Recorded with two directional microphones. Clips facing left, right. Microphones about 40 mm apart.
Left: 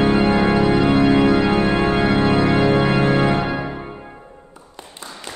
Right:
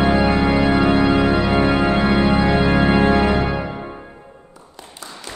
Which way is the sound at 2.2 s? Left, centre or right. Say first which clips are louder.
Even; centre.